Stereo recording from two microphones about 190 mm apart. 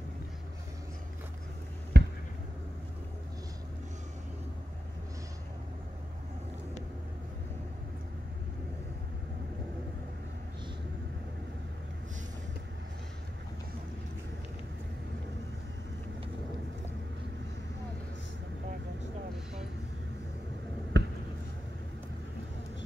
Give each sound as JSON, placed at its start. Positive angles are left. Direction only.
{"t": 2.0, "sound": "basketball bounce", "side_deg": -65}
{"t": 20.9, "sound": "basketball bounce", "side_deg": -65}